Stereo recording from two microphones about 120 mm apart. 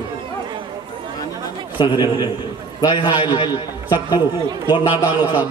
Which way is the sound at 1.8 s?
40° left (ahead or behind).